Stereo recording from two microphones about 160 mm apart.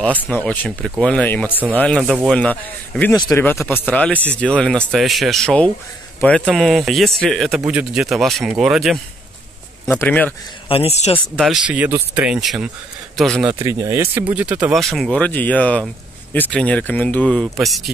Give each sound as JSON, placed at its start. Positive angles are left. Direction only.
{"t": 0.3, "sound": "speech", "side_deg": 10}
{"t": 7.5, "sound": "speech", "side_deg": -10}
{"t": 9.8, "sound": "speech", "side_deg": 10}
{"t": 10.7, "sound": "speech", "side_deg": 40}
{"t": 11.3, "sound": "speech", "side_deg": 0}
{"t": 13.5, "sound": "speech", "side_deg": -20}